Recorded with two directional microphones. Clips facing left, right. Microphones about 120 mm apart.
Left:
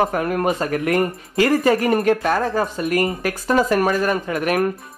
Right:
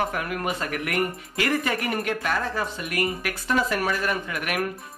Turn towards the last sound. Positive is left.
turn(degrees=35)  # may be behind; listen again after turning